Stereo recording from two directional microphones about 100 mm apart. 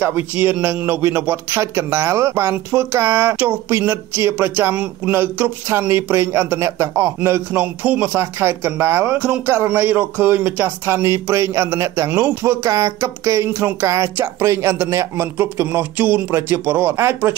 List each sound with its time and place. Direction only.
0.0 s speech: 20° right (ahead or behind)